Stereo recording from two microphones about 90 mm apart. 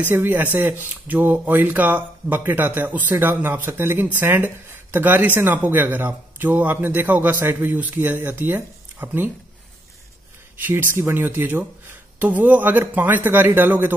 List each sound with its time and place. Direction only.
0.0 s speech: 25° right (ahead or behind)
10.6 s speech: 20° right (ahead or behind)